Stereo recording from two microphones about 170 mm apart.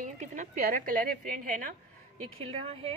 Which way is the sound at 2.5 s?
35° right (ahead or behind).